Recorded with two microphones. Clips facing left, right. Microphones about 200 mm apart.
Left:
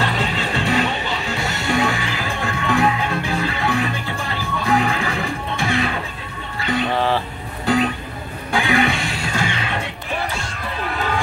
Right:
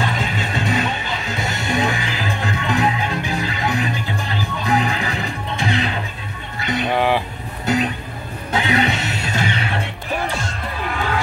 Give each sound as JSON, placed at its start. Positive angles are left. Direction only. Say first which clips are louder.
{"t": 0.0, "sound": "music", "louder": "left 1 dB", "side_deg": -15}